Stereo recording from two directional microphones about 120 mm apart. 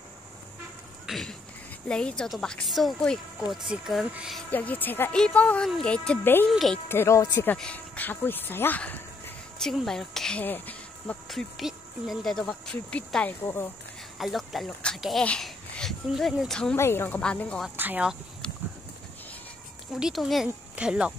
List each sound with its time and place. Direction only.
1.0 s a sound: centre (ahead or behind)
1.9 s speech: 5° left (ahead or behind)
4.5 s speech: 15° left (ahead or behind)
6.9 s speech: 20° left (ahead or behind)
7.5 s speech: 10° left (ahead or behind)
9.6 s speech: 5° left (ahead or behind)
11.2 s speech: centre (ahead or behind); by 13.7 s 20° left (ahead or behind)
14.1 s speech: centre (ahead or behind)
16.7 s speech: 20° left (ahead or behind)
17.2 s speech: 10° left (ahead or behind)
17.7 s speech: 15° right (ahead or behind)
18.4 s horse: 5° left (ahead or behind)
20.0 s speech: centre (ahead or behind)